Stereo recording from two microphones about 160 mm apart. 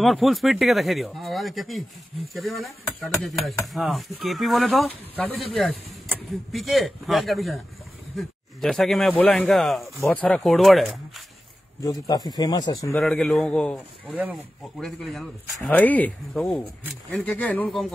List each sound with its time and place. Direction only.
0.0 s speech: centre (ahead or behind)
3.3 s speech: centre (ahead or behind)
11.8 s speech: 25° left (ahead or behind)
12.9 s speech: 5° left (ahead or behind)
14.1 s speech: 10° right (ahead or behind)
14.8 s speech: centre (ahead or behind)